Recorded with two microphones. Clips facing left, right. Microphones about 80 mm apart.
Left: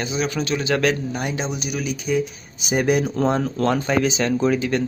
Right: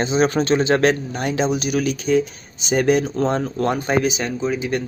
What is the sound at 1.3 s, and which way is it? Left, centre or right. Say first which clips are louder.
Speech: right 6 dB; centre.